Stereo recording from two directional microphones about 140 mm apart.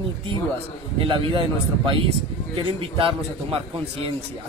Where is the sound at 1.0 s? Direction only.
35° right (ahead or behind).